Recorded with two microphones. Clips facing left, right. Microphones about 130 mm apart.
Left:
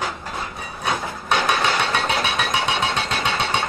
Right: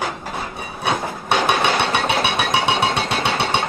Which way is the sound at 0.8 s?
20° right (ahead or behind).